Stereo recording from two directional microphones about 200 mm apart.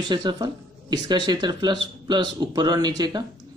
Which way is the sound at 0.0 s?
20° right (ahead or behind).